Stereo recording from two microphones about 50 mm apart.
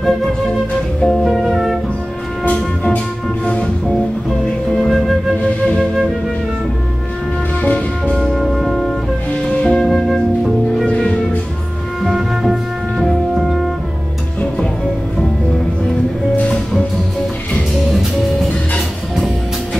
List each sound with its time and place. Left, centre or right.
1.0 s music: centre
2.4 s music: centre
4.8 s music: centre
8.2 s music: centre
9.6 s flute: centre
13.4 s music: centre